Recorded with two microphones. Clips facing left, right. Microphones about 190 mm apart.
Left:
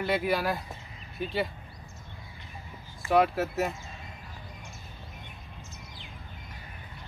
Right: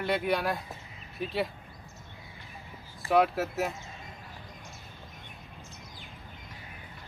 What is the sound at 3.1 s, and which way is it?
Speech, centre (ahead or behind).